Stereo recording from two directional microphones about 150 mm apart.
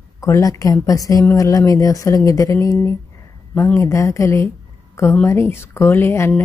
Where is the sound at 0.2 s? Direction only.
20° left (ahead or behind).